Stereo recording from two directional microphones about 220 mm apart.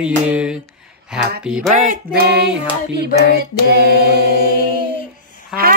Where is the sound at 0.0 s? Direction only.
5° right (ahead or behind).